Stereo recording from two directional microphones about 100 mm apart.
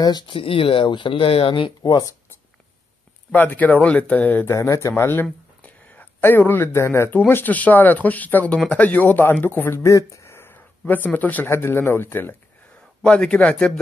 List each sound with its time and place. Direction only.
0.3 s speech: 60° left (ahead or behind); by 2.1 s 40° left (ahead or behind)
3.3 s speech: 15° left (ahead or behind)
4.6 s speech: 30° left (ahead or behind)
13.0 s speech: 10° left (ahead or behind)